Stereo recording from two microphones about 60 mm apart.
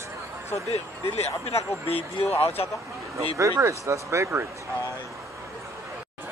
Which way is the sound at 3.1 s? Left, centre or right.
Right.